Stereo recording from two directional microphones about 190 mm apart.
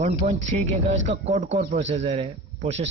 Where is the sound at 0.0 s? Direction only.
35° right (ahead or behind).